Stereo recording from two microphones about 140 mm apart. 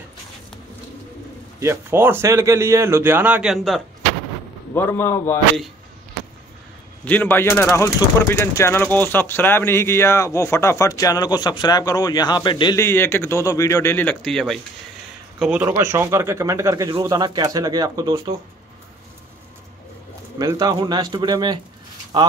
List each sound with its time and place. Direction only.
1.6 s speech: 15° right (ahead or behind); by 3.8 s centre (ahead or behind)
4.7 s speech: 15° left (ahead or behind)
7.1 s speech: 15° left (ahead or behind); by 12.7 s 35° left (ahead or behind)
12.7 s speech: 20° left (ahead or behind); by 15.7 s 10° right (ahead or behind)
15.7 s speech: 20° right (ahead or behind)
20.3 s a man's voice: 25° right (ahead or behind)